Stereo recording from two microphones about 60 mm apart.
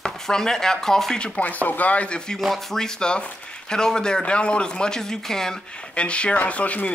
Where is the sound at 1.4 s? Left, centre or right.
Left.